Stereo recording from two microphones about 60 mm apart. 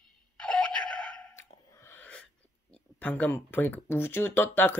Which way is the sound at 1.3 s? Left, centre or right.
Left.